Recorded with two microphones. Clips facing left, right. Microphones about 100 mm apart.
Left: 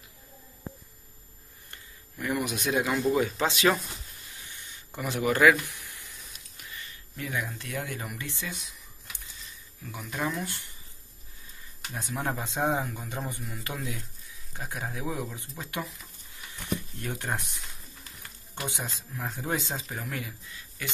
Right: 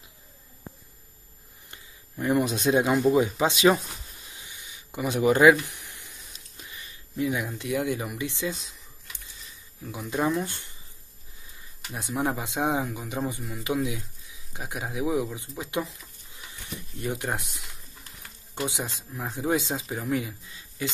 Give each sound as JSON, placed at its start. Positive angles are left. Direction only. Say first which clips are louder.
{"t": 2.1, "sound": "speech", "louder": "right 6 dB", "side_deg": -30}
{"t": 8.5, "sound": "speech", "louder": "right 7 dB", "side_deg": -30}
{"t": 9.8, "sound": "speech", "louder": "right 6 dB", "side_deg": -20}
{"t": 11.9, "sound": "speech", "louder": "right 4 dB", "side_deg": -15}
{"t": 17.0, "sound": "speech", "louder": "right 3 dB", "side_deg": -15}
{"t": 18.7, "sound": "speech", "louder": "right 3 dB", "side_deg": -20}